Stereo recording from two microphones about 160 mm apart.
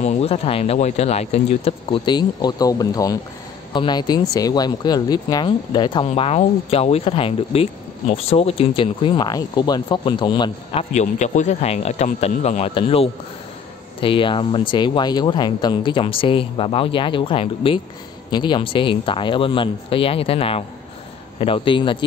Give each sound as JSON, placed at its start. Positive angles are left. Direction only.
{"t": 0.0, "sound": "speech", "side_deg": 40}
{"t": 6.0, "sound": "speech", "side_deg": 40}